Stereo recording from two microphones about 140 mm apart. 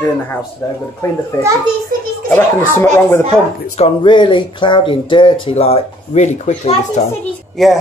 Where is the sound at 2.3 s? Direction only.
15° left (ahead or behind).